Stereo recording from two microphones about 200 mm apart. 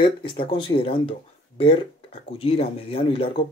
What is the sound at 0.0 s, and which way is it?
Speech, 25° left (ahead or behind).